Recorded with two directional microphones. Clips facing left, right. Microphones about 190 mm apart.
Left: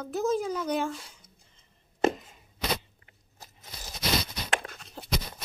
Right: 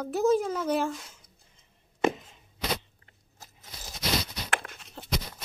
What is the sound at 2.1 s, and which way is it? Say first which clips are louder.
Chopping: left 1 dB; 5° left (ahead or behind).